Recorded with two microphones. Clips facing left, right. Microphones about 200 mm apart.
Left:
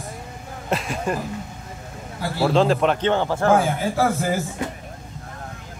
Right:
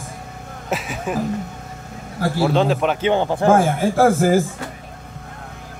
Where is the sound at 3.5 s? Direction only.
50° right (ahead or behind).